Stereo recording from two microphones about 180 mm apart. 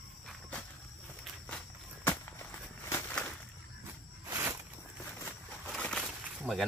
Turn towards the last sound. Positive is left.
turn(degrees=0)  # may be behind; listen again after turning